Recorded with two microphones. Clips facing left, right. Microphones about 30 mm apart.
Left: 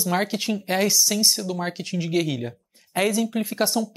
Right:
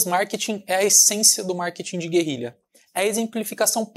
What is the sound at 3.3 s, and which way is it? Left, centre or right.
Speech, left.